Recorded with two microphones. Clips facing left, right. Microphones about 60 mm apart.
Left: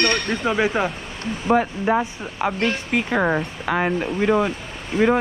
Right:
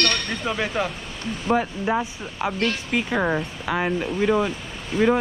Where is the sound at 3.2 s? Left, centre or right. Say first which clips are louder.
Left 2 dB; left.